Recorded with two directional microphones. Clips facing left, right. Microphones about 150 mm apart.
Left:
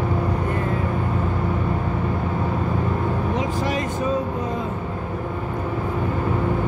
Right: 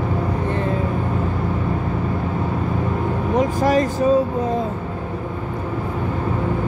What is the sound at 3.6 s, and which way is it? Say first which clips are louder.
Speech: right 6 dB; 40° right (ahead or behind).